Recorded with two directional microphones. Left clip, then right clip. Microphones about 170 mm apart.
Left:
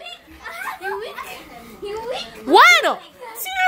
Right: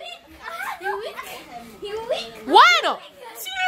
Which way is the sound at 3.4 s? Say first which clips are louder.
Left 5 dB; 25° left (ahead or behind).